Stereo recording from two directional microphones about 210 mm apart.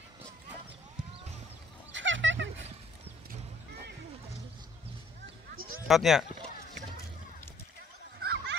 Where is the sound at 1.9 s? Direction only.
60° right (ahead or behind).